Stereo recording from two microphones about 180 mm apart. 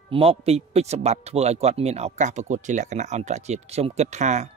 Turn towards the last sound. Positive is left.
turn(degrees=-40)  # may be behind; listen again after turning